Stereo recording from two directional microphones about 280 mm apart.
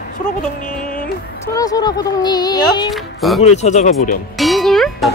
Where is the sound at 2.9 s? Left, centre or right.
Centre.